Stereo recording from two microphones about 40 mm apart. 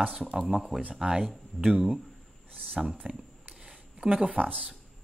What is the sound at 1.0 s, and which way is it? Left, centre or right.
Speech, right.